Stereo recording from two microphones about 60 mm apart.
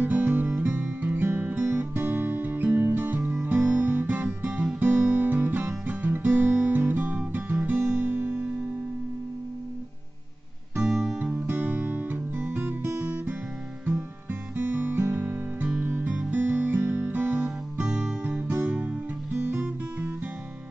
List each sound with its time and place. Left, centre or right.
0.0 s music: right
3.4 s guitar: right
7.6 s guitar: right
10.8 s music: centre
11.5 s music: right
14.6 s guitar: right
15.7 s music: right
17.4 s music: centre
18.5 s music: right